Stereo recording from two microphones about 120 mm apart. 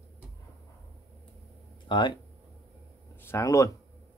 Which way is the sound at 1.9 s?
40° left (ahead or behind).